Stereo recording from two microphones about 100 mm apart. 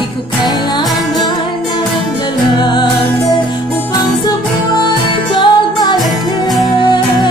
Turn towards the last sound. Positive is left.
turn(degrees=50)  # may be behind; listen again after turning